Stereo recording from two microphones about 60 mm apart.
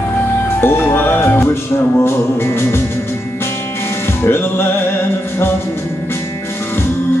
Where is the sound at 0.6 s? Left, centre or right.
Left.